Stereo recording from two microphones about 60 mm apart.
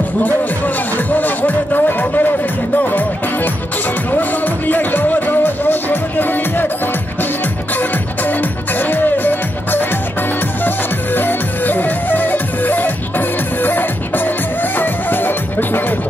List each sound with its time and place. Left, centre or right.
0.9 s music: left
4.1 s music: left
8.2 s music: left
11.1 s music: left